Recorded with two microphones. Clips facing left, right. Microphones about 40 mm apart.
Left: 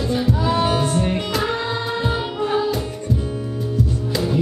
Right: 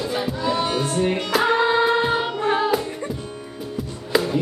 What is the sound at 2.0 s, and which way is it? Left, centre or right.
Music, centre.